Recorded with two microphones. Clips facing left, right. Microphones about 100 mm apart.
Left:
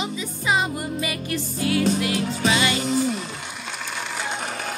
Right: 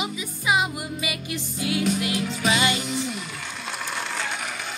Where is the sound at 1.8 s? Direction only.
30° left (ahead or behind).